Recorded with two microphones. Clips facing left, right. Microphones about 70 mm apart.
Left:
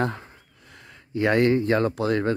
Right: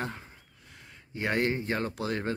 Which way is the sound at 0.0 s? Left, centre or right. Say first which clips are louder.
Left 9 dB; left.